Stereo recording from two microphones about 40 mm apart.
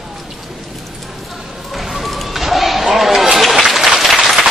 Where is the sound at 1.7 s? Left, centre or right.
Centre.